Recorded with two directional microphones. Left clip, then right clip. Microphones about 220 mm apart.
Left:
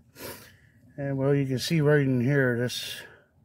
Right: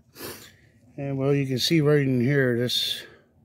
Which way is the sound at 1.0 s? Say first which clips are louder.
Right 1 dB; 25° right (ahead or behind).